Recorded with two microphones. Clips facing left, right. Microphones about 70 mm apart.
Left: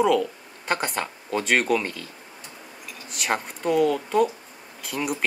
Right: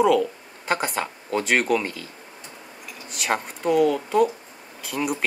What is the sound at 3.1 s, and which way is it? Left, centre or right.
A man's voice, centre.